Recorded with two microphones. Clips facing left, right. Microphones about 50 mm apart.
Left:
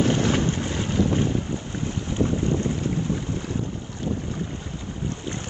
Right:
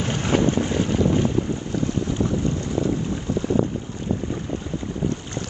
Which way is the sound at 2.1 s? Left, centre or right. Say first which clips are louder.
Even; left.